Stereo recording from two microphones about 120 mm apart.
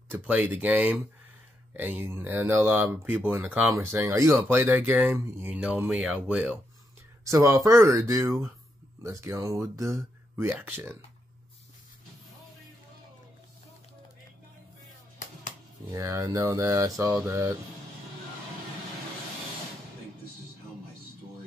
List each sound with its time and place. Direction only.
0.1 s speech: 15° right (ahead or behind)
7.2 s speech: 25° right (ahead or behind)
15.9 s speech: 25° right (ahead or behind)